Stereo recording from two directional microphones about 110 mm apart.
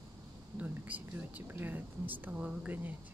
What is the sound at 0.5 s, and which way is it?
Speech, 15° right (ahead or behind).